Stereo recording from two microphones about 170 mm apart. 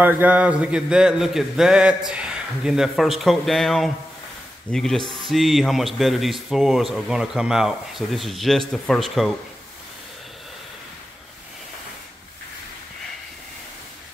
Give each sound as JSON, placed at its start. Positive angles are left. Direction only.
{"t": 0.0, "sound": "speech", "side_deg": -10}
{"t": 5.0, "sound": "speech", "side_deg": -30}
{"t": 5.3, "sound": "speech", "side_deg": 0}